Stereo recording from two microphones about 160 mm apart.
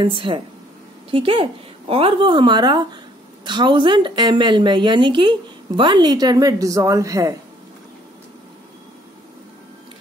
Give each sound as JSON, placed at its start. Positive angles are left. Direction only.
{"t": 0.0, "sound": "a woman's voice", "side_deg": -30}